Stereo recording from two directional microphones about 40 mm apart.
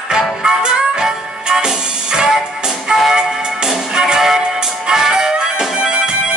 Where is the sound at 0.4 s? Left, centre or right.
Centre.